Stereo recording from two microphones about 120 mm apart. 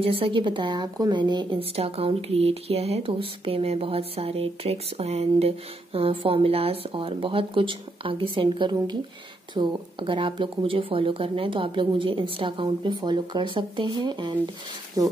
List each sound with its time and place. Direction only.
0.0 s a woman's voice: 50° right (ahead or behind); by 15.1 s 30° right (ahead or behind)